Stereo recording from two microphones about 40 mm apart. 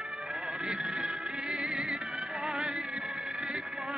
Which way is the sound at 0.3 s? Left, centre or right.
Centre.